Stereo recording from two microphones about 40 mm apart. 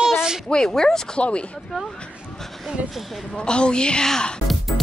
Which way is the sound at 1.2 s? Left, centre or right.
Left.